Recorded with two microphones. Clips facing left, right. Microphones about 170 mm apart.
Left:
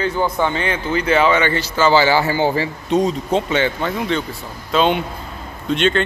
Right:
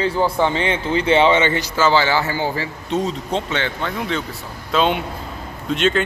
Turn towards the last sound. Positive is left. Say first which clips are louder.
# left 1 dB
turn(degrees=0)  # may be behind; listen again after turning